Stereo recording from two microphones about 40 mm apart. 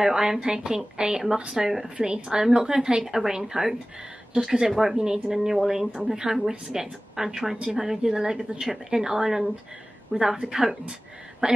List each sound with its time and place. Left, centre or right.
0.0 s a woman's voice: centre
11.4 s speech: right